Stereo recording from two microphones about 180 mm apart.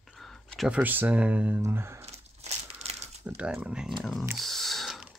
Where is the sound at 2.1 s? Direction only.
35° right (ahead or behind).